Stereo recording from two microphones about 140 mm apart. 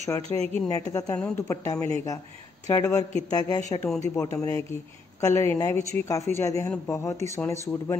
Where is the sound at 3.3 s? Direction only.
25° left (ahead or behind).